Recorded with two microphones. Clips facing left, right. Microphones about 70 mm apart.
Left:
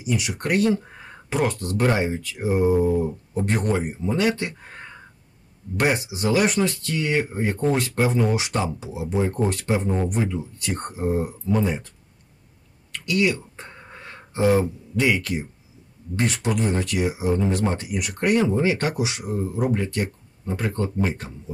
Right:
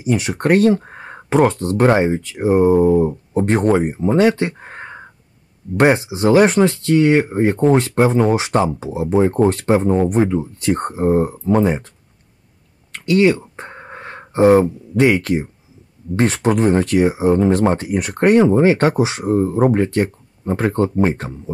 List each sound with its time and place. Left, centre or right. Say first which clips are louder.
0.0 s speech: right 8 dB; right
12.9 s a sound: right 8 dB; right
16.2 s speech: right 8 dB; right